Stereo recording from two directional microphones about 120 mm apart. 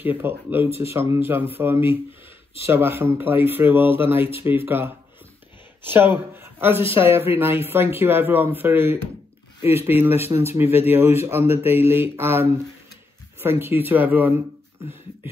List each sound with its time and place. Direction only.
0.0 s a man's voice: 15° right (ahead or behind)